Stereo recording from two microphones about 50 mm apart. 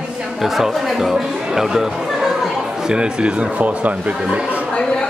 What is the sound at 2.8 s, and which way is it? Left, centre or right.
Speech, centre.